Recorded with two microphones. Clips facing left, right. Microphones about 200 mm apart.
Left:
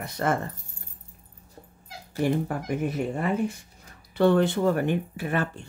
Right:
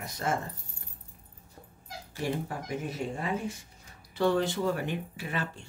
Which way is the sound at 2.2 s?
55° left (ahead or behind).